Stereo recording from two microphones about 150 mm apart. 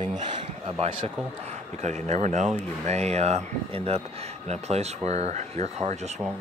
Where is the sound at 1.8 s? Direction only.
50° right (ahead or behind).